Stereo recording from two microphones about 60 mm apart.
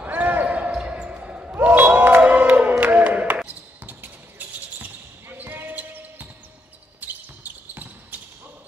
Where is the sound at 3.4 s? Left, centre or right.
Right.